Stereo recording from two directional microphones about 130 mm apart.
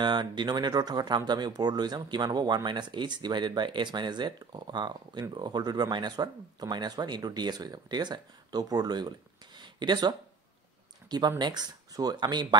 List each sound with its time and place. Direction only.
0.0 s speech: 35° right (ahead or behind)
9.6 s a sound: 35° right (ahead or behind)
11.1 s speech: 30° right (ahead or behind)